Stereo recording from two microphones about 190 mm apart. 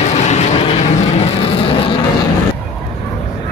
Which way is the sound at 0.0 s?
35° left (ahead or behind).